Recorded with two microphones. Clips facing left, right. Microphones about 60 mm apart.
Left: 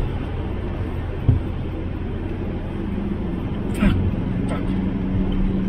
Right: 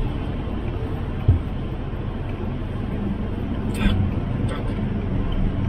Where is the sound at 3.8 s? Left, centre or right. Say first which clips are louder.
Left 5 dB; left.